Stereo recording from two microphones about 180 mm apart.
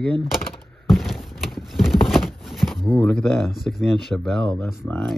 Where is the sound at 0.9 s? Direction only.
Centre (ahead or behind).